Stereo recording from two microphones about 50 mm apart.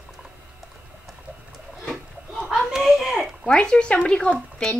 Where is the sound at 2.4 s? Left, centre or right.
Centre.